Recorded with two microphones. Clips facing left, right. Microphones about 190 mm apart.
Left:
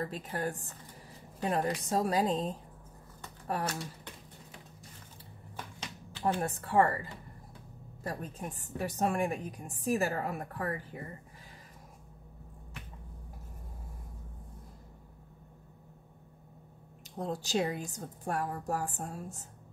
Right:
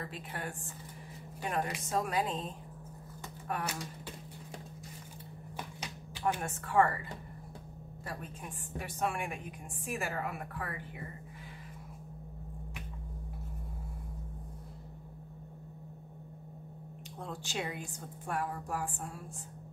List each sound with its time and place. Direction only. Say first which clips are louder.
0.0 s a woman's voice: left 6 dB; 40° left (ahead or behind)
5.6 s finger snapping: even; 10° right (ahead or behind)
6.4 s a woman's voice: left 1 dB; 35° left (ahead or behind)
17.2 s a woman's voice: left 7 dB; 40° left (ahead or behind)